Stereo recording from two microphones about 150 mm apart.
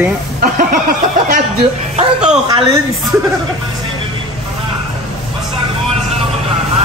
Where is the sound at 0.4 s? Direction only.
65° right (ahead or behind).